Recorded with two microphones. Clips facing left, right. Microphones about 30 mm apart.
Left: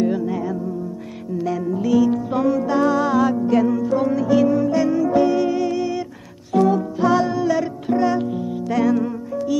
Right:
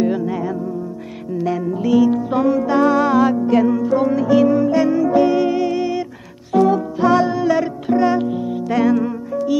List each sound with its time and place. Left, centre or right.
0.0 s music: centre